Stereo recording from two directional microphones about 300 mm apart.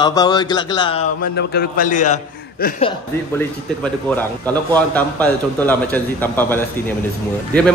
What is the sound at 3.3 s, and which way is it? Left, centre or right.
A man's voice, centre.